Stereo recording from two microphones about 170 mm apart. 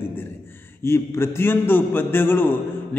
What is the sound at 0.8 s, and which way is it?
A man's voice, 15° left (ahead or behind).